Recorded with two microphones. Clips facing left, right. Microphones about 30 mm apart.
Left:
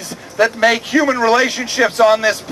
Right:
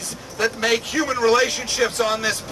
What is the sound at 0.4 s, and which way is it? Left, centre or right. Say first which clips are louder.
Speech: left 7 dB; centre.